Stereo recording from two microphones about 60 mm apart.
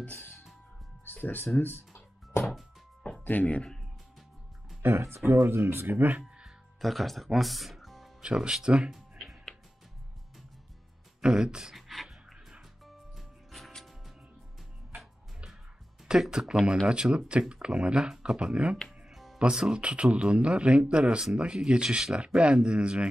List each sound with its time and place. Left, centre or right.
0.0 s music: left
3.3 s speech: left
4.8 s speech: right
6.8 s speech: centre
8.2 s speech: centre
8.9 s music: centre
11.1 s a sound: centre
12.8 s music: centre
16.1 s speech: centre
18.9 s music: centre
19.3 s speech: centre